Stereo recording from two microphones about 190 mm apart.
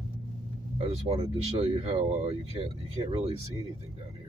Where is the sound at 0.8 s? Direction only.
35° right (ahead or behind).